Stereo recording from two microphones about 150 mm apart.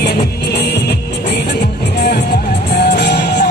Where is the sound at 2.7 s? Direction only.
90° left.